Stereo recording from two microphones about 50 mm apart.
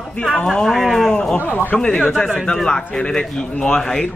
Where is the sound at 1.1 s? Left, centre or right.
Centre.